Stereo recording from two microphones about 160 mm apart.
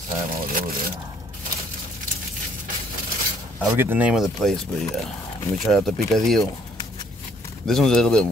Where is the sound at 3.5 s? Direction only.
15° right (ahead or behind).